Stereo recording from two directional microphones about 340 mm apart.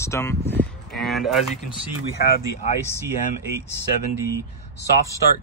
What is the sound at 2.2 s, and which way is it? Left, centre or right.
Speech, left.